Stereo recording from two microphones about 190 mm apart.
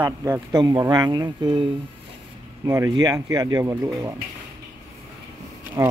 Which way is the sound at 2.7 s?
20° right (ahead or behind).